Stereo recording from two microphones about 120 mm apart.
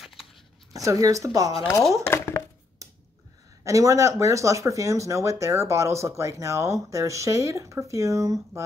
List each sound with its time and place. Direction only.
0.0 s a sound: centre (ahead or behind)
0.7 s speech: 30° right (ahead or behind)
2.0 s chopping: 20° left (ahead or behind)
2.8 s finger snapping: 30° right (ahead or behind)
3.6 s speech: 25° right (ahead or behind)